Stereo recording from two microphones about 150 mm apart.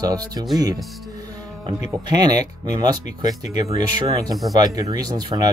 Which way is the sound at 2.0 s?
25° right (ahead or behind).